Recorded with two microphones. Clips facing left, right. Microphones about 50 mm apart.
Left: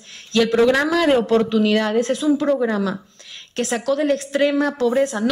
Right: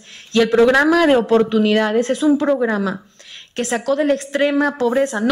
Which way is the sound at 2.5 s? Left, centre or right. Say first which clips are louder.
Right 2 dB; centre.